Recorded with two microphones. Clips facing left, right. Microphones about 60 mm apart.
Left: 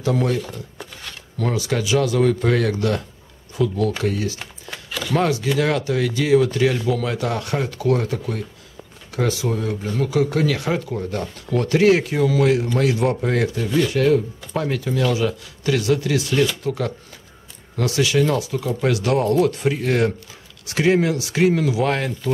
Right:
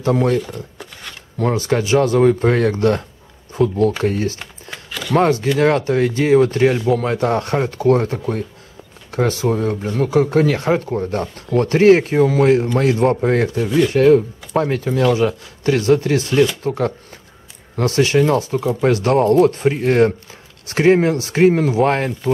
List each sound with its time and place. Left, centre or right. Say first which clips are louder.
0.0 s speech: right 4 dB; right
1.4 s speech: right 5 dB; right
4.4 s a sound: right 1 dB; centre
5.1 s speech: right 5 dB; right